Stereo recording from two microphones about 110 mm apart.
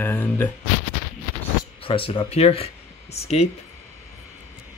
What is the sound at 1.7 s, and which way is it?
Speech, 55° left (ahead or behind).